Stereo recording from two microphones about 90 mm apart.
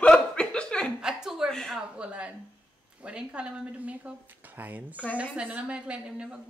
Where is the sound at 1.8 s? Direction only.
10° right (ahead or behind).